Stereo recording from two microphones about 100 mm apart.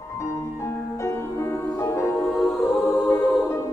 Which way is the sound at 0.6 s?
30° left (ahead or behind).